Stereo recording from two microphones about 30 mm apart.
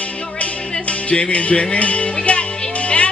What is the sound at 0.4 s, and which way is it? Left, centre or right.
Music, left.